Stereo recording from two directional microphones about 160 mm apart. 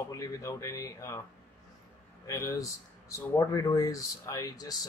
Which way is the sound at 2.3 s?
20° left (ahead or behind).